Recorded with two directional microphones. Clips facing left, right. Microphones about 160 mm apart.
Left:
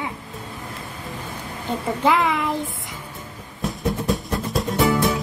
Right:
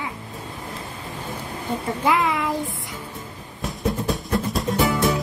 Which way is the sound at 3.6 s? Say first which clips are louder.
Left 1 dB; centre (ahead or behind).